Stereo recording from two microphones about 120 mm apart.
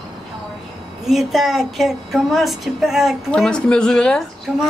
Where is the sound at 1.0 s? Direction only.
Centre (ahead or behind).